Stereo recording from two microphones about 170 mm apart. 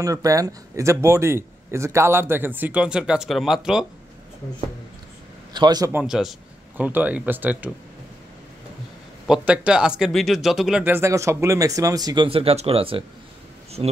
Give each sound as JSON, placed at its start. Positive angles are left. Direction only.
{"t": 0.0, "sound": "a man's voice", "side_deg": -20}
{"t": 5.5, "sound": "a man's voice", "side_deg": -25}
{"t": 5.9, "sound": "a man's voice", "side_deg": -5}
{"t": 9.3, "sound": "a man's voice", "side_deg": -5}